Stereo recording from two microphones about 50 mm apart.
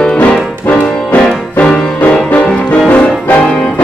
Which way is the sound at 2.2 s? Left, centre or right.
Left.